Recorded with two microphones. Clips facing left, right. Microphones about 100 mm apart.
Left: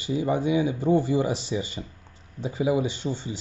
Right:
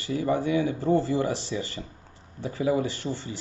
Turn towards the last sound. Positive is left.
turn(degrees=20)  # may be behind; listen again after turning